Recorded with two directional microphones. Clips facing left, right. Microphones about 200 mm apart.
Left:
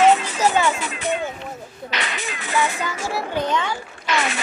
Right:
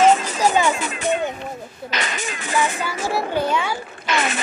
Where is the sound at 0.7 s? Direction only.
50° right (ahead or behind).